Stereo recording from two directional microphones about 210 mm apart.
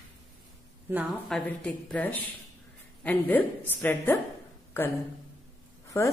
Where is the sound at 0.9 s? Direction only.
Centre (ahead or behind).